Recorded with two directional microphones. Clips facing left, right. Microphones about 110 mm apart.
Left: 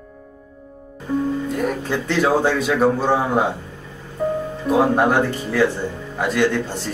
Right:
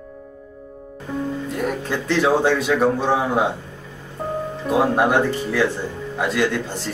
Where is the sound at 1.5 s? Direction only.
Centre (ahead or behind).